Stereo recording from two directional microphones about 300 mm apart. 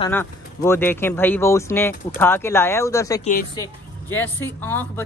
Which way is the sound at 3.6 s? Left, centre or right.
Centre.